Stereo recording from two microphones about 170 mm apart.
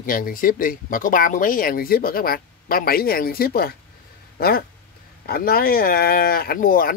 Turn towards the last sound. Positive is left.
turn(degrees=55)  # may be behind; listen again after turning